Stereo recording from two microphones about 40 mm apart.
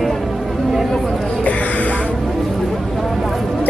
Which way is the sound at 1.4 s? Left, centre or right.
Left.